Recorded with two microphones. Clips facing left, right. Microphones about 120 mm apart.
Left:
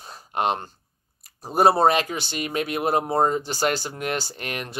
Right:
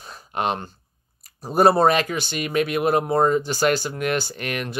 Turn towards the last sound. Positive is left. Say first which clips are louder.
# right 4 dB
turn(degrees=30)  # may be behind; listen again after turning